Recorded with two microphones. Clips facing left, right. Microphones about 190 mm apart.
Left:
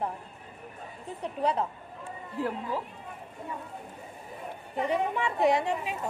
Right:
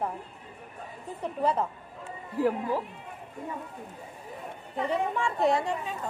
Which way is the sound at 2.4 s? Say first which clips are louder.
Right 5 dB; 10° right (ahead or behind).